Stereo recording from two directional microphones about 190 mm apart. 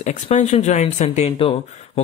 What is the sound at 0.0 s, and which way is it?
Speech, 35° left (ahead or behind).